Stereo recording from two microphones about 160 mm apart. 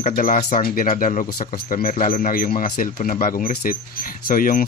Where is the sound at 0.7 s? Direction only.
60° left (ahead or behind).